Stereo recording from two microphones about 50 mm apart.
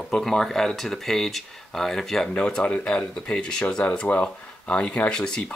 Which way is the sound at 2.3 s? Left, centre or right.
Centre.